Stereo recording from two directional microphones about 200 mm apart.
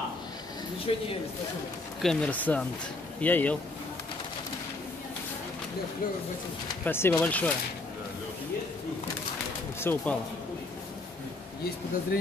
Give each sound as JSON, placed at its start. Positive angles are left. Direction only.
{"t": 0.9, "sound": "speech", "side_deg": 30}
{"t": 2.0, "sound": "speech", "side_deg": 5}
{"t": 6.8, "sound": "speech", "side_deg": 10}
{"t": 9.8, "sound": "speech", "side_deg": 10}